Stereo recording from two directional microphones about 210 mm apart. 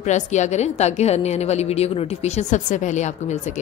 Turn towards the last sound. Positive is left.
turn(degrees=35)  # may be behind; listen again after turning